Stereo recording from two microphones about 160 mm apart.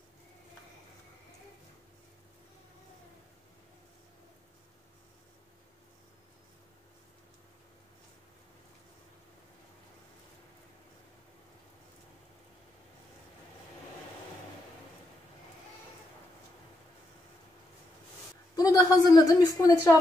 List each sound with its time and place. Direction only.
18.6 s a woman's voice: 25° left (ahead or behind)